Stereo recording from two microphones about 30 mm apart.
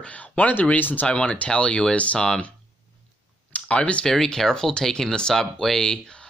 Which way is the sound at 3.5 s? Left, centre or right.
Left.